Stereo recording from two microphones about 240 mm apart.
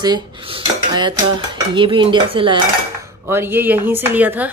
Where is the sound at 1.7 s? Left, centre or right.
Centre.